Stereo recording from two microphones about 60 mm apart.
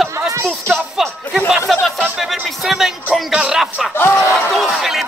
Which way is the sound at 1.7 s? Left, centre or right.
Centre.